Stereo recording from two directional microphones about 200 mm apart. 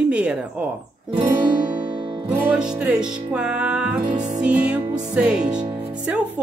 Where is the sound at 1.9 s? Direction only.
20° right (ahead or behind).